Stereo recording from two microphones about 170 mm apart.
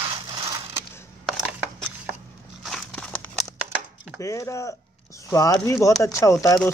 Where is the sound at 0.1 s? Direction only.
25° right (ahead or behind).